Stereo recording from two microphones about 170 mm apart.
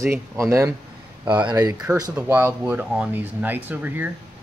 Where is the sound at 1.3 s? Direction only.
25° right (ahead or behind).